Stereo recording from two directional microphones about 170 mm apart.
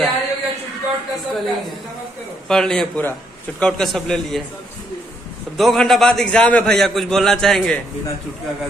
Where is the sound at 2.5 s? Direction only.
5° left (ahead or behind).